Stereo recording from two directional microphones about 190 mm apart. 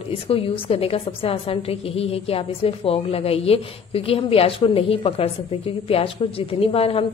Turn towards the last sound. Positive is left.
turn(degrees=30)  # may be behind; listen again after turning